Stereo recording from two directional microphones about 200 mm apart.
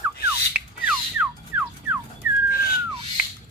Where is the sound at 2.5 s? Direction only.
45° left (ahead or behind).